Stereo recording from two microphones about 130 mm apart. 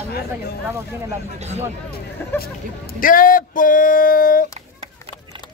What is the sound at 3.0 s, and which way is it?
Speech, 90° left.